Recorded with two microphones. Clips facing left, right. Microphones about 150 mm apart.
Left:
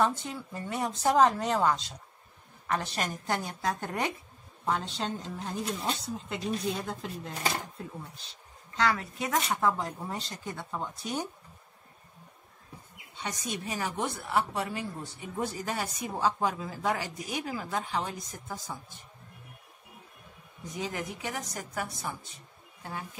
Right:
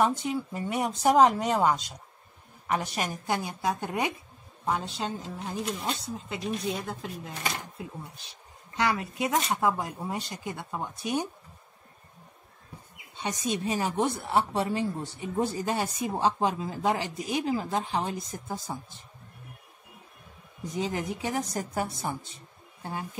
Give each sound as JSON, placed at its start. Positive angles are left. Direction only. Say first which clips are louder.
{"t": 0.0, "sound": "speech", "louder": "right 3 dB", "side_deg": -15}
{"t": 8.7, "sound": "speech", "louder": "right 1 dB", "side_deg": -15}
{"t": 13.2, "sound": "speech", "louder": "right 6 dB", "side_deg": -25}
{"t": 20.8, "sound": "a woman's voice", "louder": "right 4 dB", "side_deg": -30}